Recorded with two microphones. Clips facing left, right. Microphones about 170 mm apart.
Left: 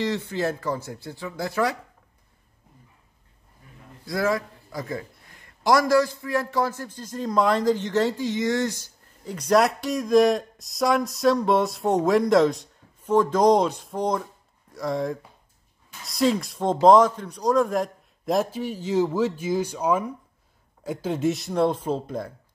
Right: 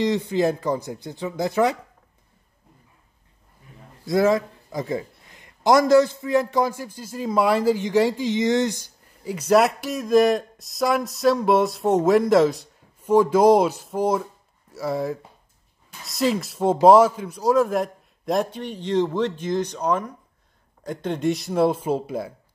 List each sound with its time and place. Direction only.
0.0 s a man's voice: 15° right (ahead or behind)
4.0 s a man's voice: 25° right (ahead or behind)